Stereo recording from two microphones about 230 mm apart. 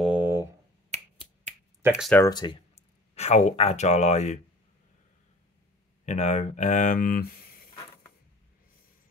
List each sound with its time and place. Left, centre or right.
0.0 s a sound: centre
2.0 s speech: centre
2.2 s speech: centre
6.0 s speech: left